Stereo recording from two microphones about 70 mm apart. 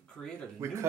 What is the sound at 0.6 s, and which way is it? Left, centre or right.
Speech, right.